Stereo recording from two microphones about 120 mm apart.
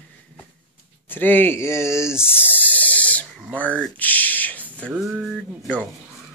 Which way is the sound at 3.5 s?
10° left (ahead or behind).